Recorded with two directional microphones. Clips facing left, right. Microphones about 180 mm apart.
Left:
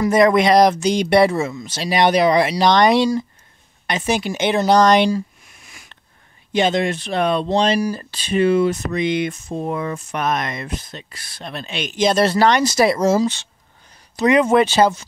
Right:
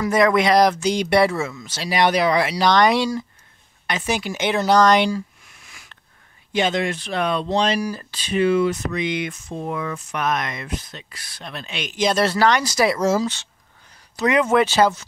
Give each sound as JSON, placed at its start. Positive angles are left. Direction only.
{"t": 0.0, "sound": "speech", "side_deg": 20}
{"t": 6.5, "sound": "speech", "side_deg": 25}